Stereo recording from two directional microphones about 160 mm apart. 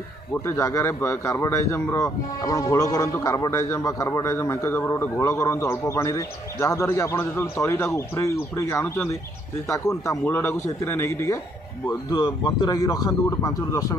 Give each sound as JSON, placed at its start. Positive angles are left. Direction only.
{"t": 0.3, "sound": "speech", "side_deg": 15}